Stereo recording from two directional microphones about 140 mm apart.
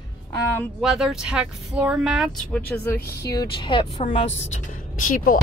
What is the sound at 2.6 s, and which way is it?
Speech, 15° left (ahead or behind).